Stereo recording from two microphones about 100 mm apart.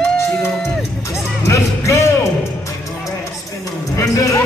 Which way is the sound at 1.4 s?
30° left (ahead or behind).